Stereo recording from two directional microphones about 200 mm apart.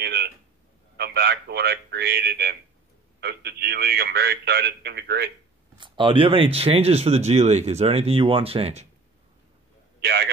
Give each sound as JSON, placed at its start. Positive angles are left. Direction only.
{"t": 0.0, "sound": "a man's voice", "side_deg": -55}
{"t": 5.8, "sound": "speech", "side_deg": -25}
{"t": 9.9, "sound": "a man's voice", "side_deg": -55}